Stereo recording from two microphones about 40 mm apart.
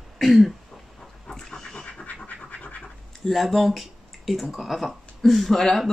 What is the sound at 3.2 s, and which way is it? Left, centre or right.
Speech, centre.